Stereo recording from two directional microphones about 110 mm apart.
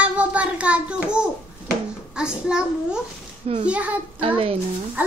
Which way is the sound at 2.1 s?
5° right (ahead or behind).